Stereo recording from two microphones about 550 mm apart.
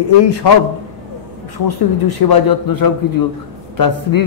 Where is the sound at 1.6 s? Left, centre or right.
Left.